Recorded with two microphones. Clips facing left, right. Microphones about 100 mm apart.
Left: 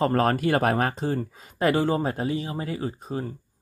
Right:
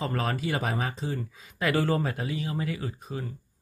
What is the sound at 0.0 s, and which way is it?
Speech, 50° left (ahead or behind).